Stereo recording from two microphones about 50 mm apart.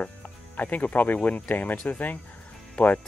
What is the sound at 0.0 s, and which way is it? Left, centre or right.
Speech, left.